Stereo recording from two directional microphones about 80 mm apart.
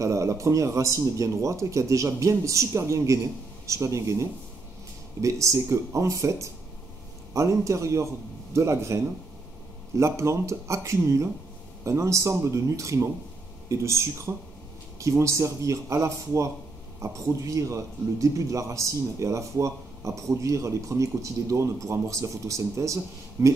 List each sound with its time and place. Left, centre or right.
0.0 s a man's voice: right